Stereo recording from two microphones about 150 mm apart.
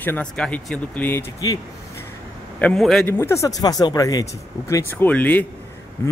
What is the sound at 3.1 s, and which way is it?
Speech, 20° left (ahead or behind).